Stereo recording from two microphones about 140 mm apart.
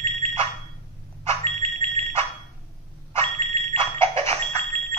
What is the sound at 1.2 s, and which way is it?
Alarm, 50° right (ahead or behind).